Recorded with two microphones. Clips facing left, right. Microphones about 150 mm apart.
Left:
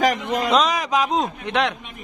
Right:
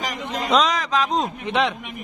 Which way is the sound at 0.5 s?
Centre (ahead or behind).